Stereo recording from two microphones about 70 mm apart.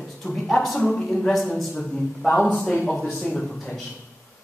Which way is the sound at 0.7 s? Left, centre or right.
Centre.